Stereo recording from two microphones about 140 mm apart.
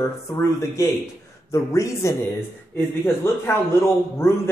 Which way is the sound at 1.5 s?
20° left (ahead or behind).